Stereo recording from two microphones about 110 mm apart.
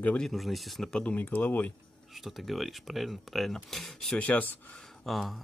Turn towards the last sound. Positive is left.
turn(degrees=0)  # may be behind; listen again after turning